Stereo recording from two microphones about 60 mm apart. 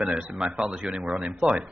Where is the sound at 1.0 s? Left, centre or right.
Centre.